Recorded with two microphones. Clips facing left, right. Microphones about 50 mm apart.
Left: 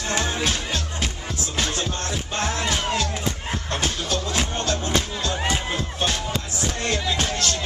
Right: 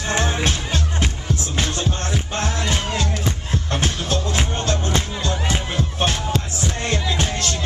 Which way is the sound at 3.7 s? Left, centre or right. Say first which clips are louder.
Right 3 dB; right.